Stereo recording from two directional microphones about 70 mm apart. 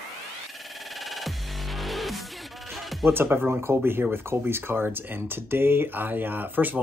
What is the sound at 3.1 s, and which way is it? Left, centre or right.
Speech, right.